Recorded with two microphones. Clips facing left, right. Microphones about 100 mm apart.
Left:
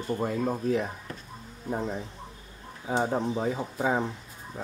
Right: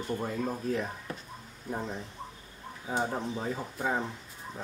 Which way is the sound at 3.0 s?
20° left (ahead or behind).